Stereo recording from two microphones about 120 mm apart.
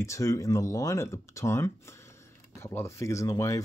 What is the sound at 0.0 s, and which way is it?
Speech, 25° left (ahead or behind).